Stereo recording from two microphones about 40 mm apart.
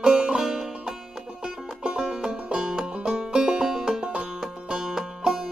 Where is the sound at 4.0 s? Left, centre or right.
Right.